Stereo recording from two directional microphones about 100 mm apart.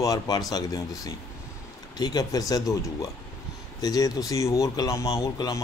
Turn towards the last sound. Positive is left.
turn(degrees=35)  # may be behind; listen again after turning